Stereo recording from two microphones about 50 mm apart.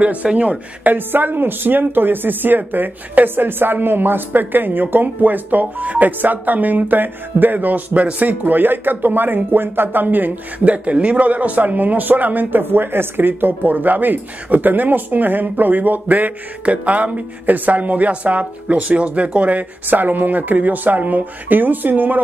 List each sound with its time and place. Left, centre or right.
0.0 s speech: right
0.9 s speech: right
19.9 s speech: right